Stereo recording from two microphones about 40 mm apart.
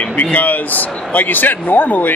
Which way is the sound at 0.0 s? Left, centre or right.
Left.